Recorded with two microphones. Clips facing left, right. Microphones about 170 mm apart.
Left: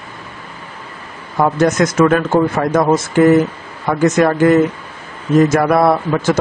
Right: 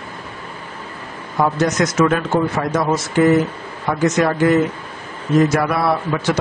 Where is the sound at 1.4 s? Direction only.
50° left (ahead or behind).